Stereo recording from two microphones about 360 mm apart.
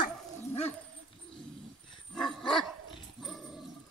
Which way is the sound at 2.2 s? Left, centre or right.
Centre.